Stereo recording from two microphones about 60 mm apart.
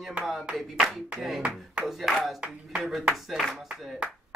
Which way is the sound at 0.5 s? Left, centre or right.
Centre.